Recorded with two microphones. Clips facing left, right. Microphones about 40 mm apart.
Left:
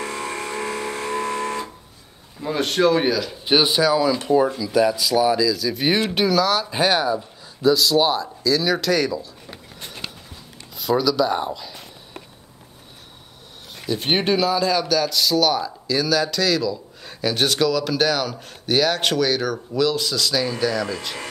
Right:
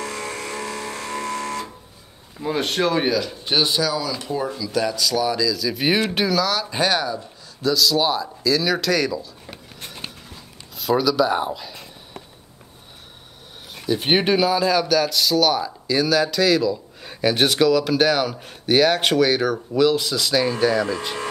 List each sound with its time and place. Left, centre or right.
0.0 s a sound: left
2.4 s speech: centre
3.4 s speech: centre
4.7 s speech: centre
10.8 s speech: centre
13.8 s speech: centre